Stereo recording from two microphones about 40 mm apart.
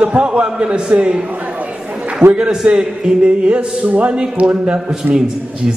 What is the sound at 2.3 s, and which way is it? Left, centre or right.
A man's voice, right.